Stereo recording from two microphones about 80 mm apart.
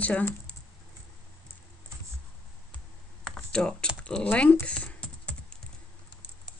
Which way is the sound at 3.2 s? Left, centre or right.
Centre.